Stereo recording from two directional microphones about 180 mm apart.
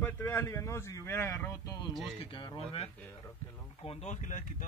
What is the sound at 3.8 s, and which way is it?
Speech, 35° left (ahead or behind).